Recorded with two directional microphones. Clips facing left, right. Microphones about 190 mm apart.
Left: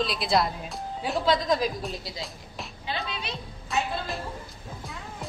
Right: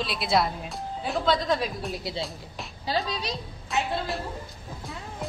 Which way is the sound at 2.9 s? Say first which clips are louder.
Right 5 dB; 40° right (ahead or behind).